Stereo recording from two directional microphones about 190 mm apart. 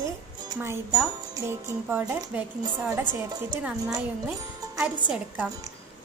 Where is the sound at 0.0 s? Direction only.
15° right (ahead or behind).